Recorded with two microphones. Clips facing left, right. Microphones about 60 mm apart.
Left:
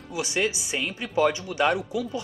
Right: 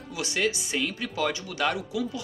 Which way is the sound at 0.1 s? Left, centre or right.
Left.